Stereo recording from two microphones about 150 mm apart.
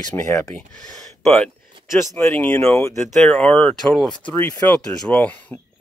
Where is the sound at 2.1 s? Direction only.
10° left (ahead or behind).